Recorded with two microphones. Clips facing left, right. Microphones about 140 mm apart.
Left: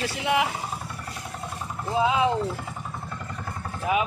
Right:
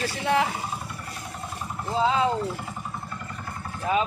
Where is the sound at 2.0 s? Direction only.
15° left (ahead or behind).